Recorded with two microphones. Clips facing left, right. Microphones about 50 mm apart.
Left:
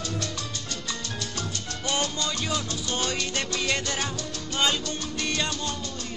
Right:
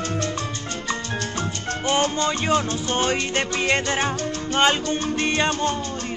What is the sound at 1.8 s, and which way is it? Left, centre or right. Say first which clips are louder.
Music: right 7 dB; right.